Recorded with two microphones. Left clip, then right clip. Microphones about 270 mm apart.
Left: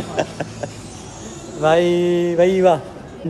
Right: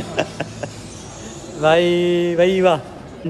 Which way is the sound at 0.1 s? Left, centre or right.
Centre.